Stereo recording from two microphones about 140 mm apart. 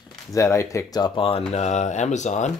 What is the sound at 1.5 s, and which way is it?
Speech, 55° left (ahead or behind).